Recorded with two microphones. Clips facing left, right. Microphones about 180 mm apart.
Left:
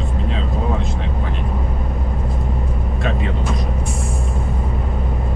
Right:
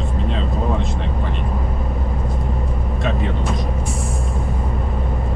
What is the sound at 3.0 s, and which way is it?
Vehicle, centre (ahead or behind).